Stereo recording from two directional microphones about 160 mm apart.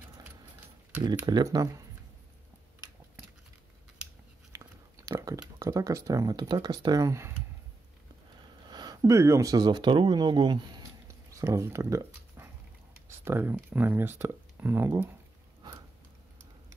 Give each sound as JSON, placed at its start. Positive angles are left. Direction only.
{"t": 1.0, "sound": "speech", "side_deg": -25}
{"t": 4.5, "sound": "a sound", "side_deg": -20}
{"t": 8.6, "sound": "speech", "side_deg": -25}